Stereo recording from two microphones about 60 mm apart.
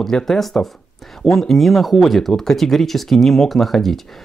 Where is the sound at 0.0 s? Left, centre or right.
Centre.